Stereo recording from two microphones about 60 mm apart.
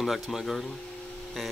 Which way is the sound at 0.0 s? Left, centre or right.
Centre.